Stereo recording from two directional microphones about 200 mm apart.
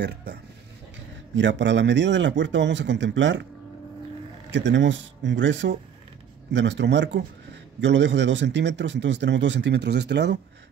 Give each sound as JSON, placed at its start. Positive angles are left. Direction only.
{"t": 0.0, "sound": "a man's voice", "side_deg": -55}
{"t": 4.5, "sound": "a man's voice", "side_deg": -65}